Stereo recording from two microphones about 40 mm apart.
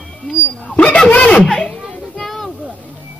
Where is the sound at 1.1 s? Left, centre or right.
Left.